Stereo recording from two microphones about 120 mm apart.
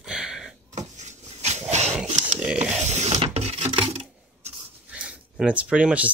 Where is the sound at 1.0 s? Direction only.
75° right (ahead or behind).